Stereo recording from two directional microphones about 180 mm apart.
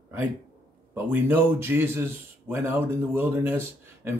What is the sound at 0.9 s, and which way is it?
Speech, 10° right (ahead or behind).